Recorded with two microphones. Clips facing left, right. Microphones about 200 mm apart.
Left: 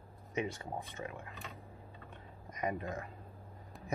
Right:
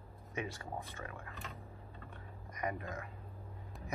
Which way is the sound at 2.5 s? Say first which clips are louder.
Left 3 dB; 20° left (ahead or behind).